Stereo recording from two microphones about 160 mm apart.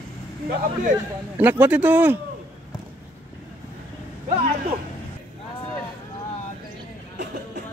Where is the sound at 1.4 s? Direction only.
10° right (ahead or behind).